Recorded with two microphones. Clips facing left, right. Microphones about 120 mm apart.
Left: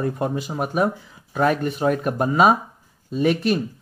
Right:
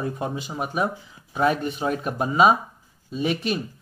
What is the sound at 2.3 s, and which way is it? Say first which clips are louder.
Speech: left 1 dB; 45° left (ahead or behind).